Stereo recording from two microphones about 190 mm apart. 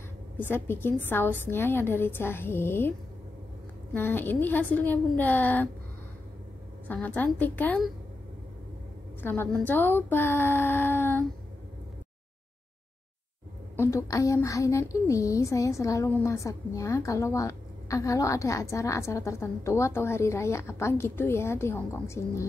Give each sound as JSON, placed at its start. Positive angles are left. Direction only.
{"t": 0.4, "sound": "speech", "side_deg": 10}
{"t": 3.9, "sound": "speech", "side_deg": 10}
{"t": 6.9, "sound": "speech", "side_deg": 10}
{"t": 9.2, "sound": "speech", "side_deg": 10}
{"t": 13.7, "sound": "speech", "side_deg": 15}